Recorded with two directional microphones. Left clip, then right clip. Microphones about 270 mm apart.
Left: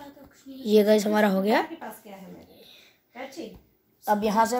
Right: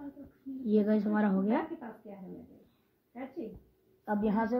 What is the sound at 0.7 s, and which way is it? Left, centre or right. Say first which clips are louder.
Speech: left 10 dB; left.